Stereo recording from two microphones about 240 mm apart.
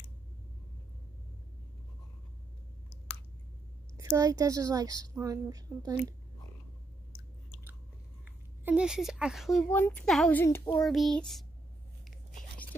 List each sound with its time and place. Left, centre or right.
3.9 s a woman's voice: centre
8.6 s speech: centre